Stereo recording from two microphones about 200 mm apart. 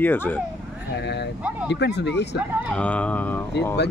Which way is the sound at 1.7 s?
60° left (ahead or behind).